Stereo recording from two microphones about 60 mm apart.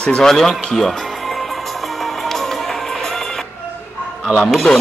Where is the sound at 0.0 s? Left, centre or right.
Centre.